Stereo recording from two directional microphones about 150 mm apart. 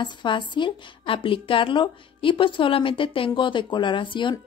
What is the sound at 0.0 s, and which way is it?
A woman's voice, 30° left (ahead or behind).